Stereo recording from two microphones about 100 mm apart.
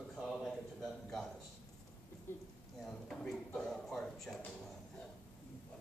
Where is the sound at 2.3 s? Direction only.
25° left (ahead or behind).